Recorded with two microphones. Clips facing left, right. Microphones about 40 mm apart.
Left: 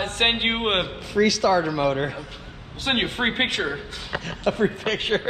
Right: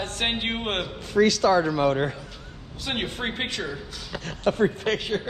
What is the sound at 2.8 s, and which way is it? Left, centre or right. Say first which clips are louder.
A man's voice: left 6 dB; left.